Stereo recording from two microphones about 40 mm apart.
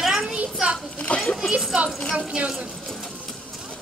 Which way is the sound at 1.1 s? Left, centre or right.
Left.